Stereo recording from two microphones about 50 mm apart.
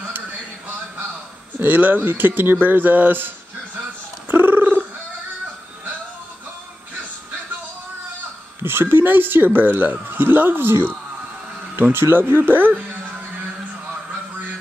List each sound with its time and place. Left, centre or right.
1.6 s speech: right
4.3 s a sound: right
8.6 s speech: right
11.8 s speech: right